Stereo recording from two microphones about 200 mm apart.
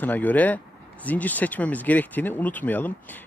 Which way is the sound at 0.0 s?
10° left (ahead or behind).